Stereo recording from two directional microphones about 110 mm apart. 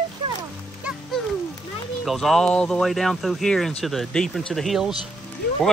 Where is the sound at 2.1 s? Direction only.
Centre (ahead or behind).